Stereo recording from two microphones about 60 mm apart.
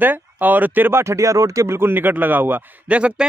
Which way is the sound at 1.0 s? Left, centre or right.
Right.